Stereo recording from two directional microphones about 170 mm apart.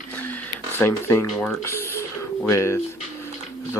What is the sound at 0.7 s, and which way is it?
Speech, 15° left (ahead or behind).